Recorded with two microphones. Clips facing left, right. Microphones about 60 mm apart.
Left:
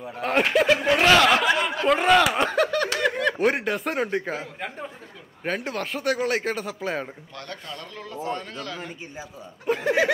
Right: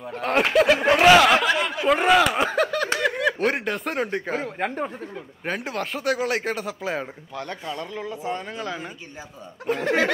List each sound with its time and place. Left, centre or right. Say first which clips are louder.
0.0 s speech: right 1 dB; centre
1.8 s a sound: right 1 dB; centre
3.0 s speech: even; centre
4.4 s speech: right 7 dB; right
5.4 s speech: even; centre
7.3 s speech: right 6 dB; centre
9.7 s speech: even; centre